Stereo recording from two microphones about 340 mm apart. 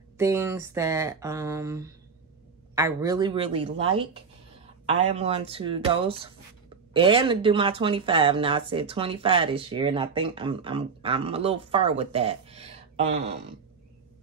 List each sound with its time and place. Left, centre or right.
0.2 s speech: centre